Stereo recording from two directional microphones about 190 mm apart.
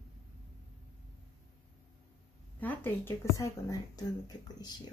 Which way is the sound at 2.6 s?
10° left (ahead or behind).